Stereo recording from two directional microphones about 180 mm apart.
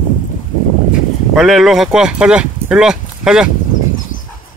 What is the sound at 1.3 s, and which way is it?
Speech, centre (ahead or behind).